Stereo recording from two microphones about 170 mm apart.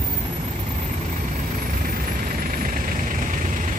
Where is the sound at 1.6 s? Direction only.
55° right (ahead or behind).